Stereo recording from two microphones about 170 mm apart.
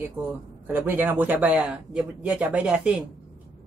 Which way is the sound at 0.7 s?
10° right (ahead or behind).